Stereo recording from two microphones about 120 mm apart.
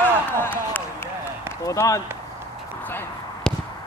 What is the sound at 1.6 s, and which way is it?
Run, 25° left (ahead or behind).